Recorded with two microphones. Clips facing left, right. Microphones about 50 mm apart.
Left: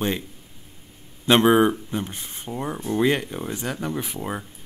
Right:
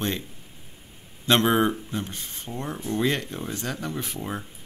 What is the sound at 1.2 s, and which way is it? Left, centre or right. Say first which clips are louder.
A man's voice: left 4 dB; centre.